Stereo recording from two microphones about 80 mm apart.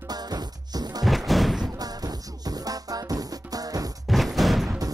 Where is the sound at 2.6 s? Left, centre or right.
Right.